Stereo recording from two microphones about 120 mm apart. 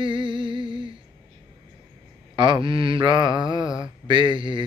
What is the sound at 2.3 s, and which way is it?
Mantra, 40° right (ahead or behind).